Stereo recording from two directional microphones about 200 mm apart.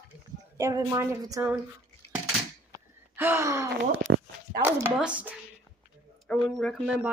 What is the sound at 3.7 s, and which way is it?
Speech, 85° right.